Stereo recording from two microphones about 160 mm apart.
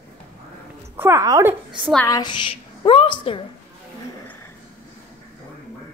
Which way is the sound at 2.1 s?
25° left (ahead or behind).